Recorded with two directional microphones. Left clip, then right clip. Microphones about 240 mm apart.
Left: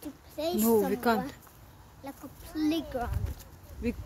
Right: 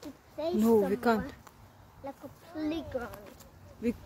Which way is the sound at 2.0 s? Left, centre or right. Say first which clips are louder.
Right 1 dB; left.